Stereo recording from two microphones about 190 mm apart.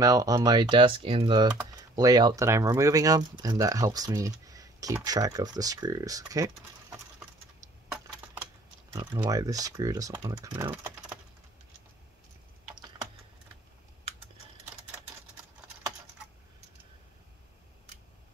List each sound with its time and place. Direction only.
0.0 s speech: 20° right (ahead or behind)
8.9 s speech: 20° right (ahead or behind)